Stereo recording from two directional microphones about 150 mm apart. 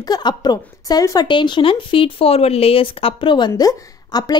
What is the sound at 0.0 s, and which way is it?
A woman's voice, 30° left (ahead or behind).